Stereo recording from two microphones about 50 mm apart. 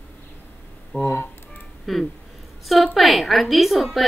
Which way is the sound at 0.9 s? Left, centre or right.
Left.